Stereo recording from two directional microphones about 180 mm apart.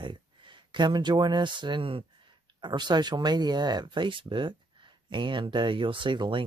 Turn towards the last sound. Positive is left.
turn(degrees=-25)  # may be behind; listen again after turning